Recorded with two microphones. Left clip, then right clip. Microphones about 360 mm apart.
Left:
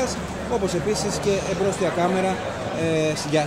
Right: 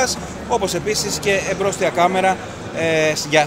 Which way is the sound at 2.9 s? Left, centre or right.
Right.